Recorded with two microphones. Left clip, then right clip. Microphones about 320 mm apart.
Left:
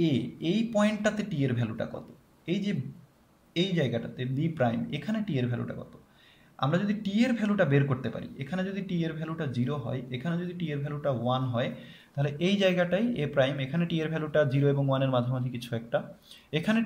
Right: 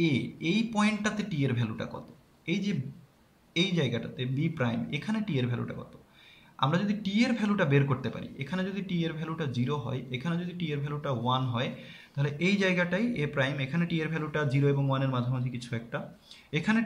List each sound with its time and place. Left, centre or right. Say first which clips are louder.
0.0 s a man's voice: even; centre